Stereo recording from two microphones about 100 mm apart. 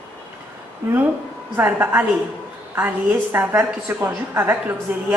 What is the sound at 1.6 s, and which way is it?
A woman's voice, 15° right (ahead or behind).